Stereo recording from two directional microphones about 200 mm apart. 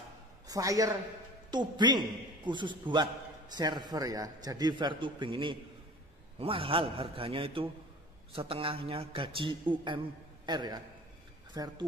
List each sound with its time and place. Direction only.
0.5 s a man's voice: 15° right (ahead or behind)